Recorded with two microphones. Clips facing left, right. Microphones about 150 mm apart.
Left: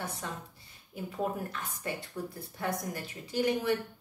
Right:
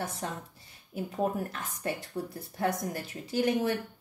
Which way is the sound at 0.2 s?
50° right (ahead or behind).